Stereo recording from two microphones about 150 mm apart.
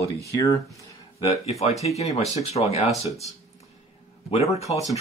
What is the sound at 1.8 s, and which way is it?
Speech, 45° left (ahead or behind).